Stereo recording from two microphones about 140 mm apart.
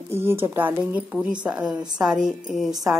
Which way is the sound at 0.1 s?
15° right (ahead or behind).